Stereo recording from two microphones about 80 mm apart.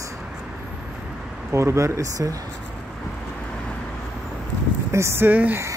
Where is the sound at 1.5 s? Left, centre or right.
Right.